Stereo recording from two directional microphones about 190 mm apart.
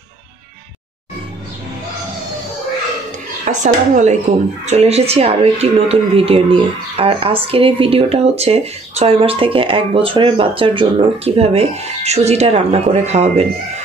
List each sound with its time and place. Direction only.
3.6 s speech: 40° right (ahead or behind)